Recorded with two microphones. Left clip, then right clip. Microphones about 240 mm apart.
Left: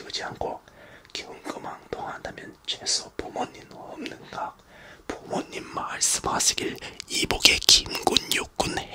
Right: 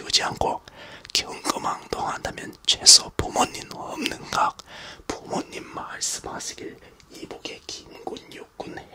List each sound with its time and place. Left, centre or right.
0.0 s speech: right
5.0 s speech: centre; by 8.8 s left